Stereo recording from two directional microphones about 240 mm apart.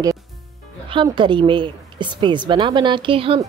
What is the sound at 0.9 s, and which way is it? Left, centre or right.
A woman's voice, right.